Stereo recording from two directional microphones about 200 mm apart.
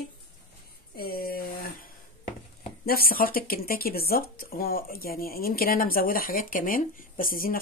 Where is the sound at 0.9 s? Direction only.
50° left (ahead or behind).